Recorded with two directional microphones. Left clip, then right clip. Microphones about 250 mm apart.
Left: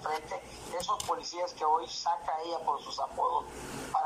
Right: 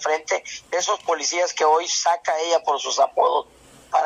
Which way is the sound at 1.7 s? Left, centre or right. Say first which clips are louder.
Right 7 dB; right.